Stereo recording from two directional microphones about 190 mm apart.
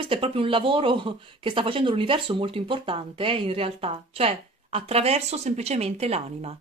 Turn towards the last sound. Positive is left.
turn(degrees=-35)  # may be behind; listen again after turning